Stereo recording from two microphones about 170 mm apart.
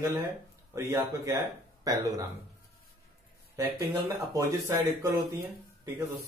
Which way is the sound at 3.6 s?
15° right (ahead or behind).